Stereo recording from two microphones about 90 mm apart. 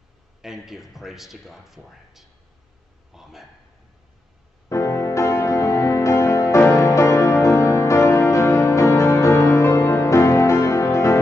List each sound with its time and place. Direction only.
0.4 s speech: 5° right (ahead or behind)
3.1 s a sound: 5° right (ahead or behind)
4.6 s music: 35° left (ahead or behind)